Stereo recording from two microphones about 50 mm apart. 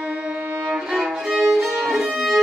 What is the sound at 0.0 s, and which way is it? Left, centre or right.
Violin, right.